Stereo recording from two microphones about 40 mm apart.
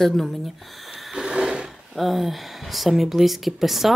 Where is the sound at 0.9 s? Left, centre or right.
Centre.